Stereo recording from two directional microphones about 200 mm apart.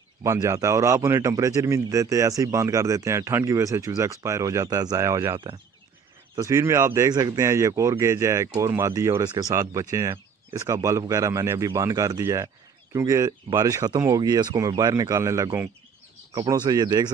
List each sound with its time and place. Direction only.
0.2 s speech: 15° right (ahead or behind)